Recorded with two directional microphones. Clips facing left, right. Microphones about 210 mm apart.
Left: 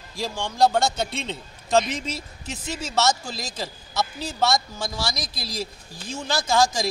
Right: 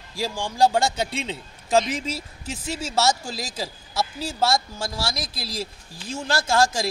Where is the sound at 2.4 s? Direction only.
30° right (ahead or behind).